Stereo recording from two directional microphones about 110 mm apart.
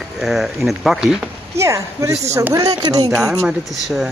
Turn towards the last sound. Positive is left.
turn(degrees=-5)  # may be behind; listen again after turning